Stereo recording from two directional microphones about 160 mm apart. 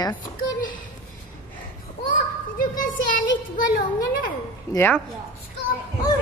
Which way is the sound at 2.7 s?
55° left (ahead or behind).